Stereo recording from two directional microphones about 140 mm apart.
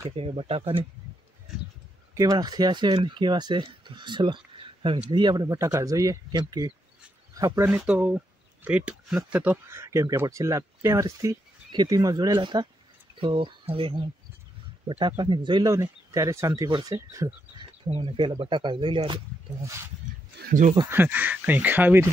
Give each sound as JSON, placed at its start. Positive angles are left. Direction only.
{"t": 0.1, "sound": "speech", "side_deg": -45}
{"t": 2.1, "sound": "speech", "side_deg": -25}
{"t": 7.8, "sound": "speech", "side_deg": -10}
{"t": 17.8, "sound": "speech", "side_deg": -40}
{"t": 20.4, "sound": "speech", "side_deg": -60}
{"t": 20.9, "sound": "speech", "side_deg": -15}